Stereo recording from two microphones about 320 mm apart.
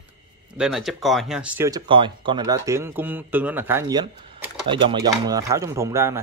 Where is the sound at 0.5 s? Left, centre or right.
Centre.